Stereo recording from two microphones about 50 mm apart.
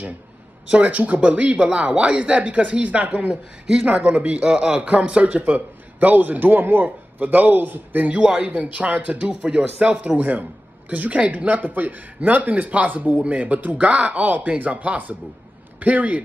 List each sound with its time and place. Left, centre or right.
0.7 s speech: right
5.5 s a man's voice: right
8.2 s speech: right
9.2 s a man's voice: centre